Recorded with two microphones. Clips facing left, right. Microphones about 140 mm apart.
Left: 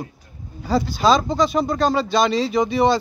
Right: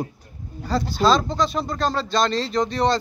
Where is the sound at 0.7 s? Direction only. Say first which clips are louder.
Left 2 dB; centre (ahead or behind).